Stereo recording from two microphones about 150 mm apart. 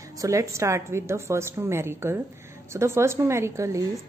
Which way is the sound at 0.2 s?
20° right (ahead or behind).